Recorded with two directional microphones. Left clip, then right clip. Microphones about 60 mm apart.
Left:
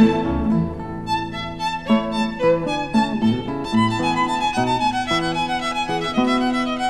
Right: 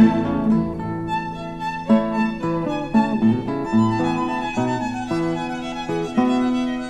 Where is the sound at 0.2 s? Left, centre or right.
Centre.